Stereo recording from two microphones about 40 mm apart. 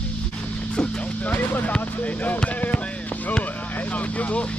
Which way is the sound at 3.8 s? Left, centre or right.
Left.